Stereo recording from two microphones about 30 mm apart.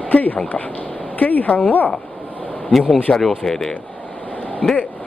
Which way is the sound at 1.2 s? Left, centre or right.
Left.